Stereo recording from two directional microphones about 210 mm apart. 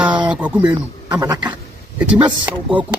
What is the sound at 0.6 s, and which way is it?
Speech, 20° right (ahead or behind).